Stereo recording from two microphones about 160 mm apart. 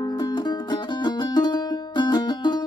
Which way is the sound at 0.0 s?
25° left (ahead or behind).